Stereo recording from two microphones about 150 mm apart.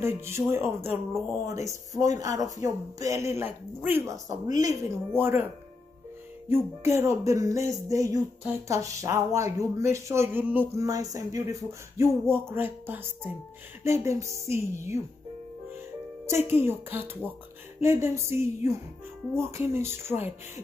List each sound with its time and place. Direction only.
0.0 s music: 15° right (ahead or behind)
1.5 s speech: 20° right (ahead or behind)
6.5 s speech: 15° right (ahead or behind)
12.0 s music: 15° right (ahead or behind)
13.8 s speech: 20° right (ahead or behind)
16.3 s music: 15° right (ahead or behind)